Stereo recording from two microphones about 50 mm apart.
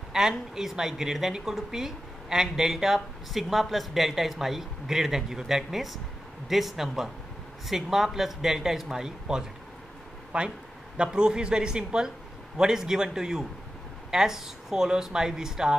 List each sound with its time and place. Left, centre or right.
0.1 s a woman's voice: centre